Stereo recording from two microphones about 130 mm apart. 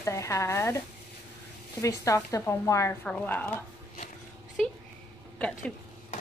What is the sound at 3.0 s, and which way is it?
Speech, 10° left (ahead or behind).